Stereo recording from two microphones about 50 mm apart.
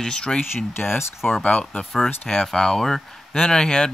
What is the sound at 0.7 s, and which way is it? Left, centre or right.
Speech, left.